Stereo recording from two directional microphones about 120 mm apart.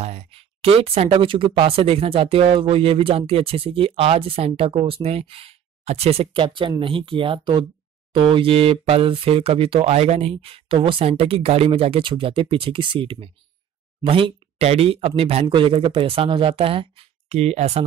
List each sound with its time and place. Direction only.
0.0 s speech: 65° right (ahead or behind)